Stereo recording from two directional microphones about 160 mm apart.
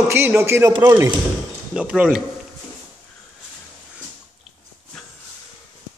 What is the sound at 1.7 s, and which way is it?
Speech, 5° right (ahead or behind).